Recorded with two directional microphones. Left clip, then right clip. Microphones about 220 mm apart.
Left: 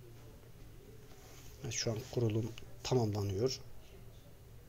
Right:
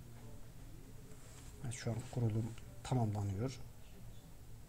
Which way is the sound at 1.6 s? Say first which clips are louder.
Left 7 dB; 15° left (ahead or behind).